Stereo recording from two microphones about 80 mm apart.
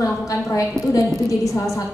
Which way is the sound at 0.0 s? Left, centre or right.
Left.